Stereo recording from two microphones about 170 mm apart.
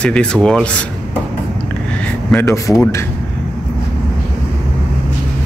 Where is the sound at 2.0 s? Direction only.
10° left (ahead or behind).